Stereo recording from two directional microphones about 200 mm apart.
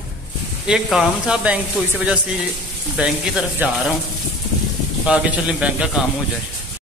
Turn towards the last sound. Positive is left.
turn(degrees=-5)  # may be behind; listen again after turning